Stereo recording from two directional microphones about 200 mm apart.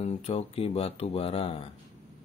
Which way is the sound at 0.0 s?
30° left (ahead or behind).